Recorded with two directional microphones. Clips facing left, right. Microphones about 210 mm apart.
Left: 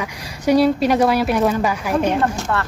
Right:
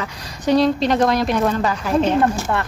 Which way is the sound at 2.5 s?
20° right (ahead or behind).